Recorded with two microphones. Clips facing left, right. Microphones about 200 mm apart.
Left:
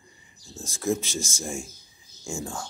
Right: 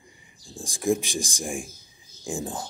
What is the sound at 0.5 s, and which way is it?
Speech, 15° right (ahead or behind).